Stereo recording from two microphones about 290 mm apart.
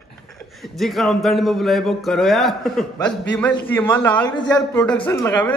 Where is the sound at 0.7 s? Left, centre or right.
Centre.